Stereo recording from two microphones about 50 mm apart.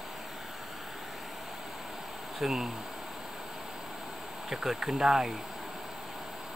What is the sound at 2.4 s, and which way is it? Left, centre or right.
Speech, centre.